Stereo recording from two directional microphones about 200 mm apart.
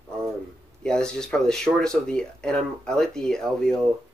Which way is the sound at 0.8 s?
5° left (ahead or behind).